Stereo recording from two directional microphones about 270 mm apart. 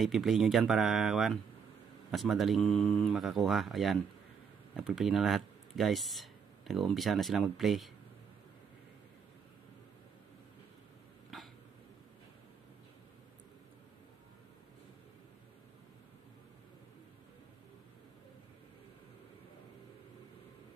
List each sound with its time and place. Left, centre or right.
0.0 s speech: centre
11.3 s throat clearing: centre